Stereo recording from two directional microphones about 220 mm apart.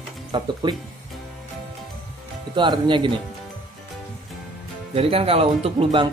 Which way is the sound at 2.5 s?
20° right (ahead or behind).